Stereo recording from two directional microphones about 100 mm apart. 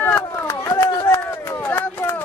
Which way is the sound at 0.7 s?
25° left (ahead or behind).